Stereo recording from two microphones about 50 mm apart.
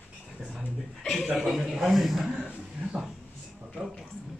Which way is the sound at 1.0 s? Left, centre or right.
Centre.